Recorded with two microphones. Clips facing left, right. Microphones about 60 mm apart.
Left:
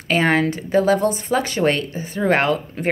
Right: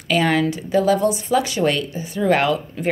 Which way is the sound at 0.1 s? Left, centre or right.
Left.